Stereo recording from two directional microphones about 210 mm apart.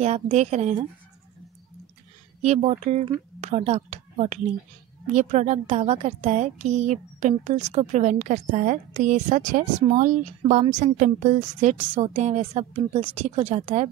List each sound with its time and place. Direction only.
0.0 s a woman's voice: 30° right (ahead or behind)
2.4 s a woman's voice: 30° right (ahead or behind)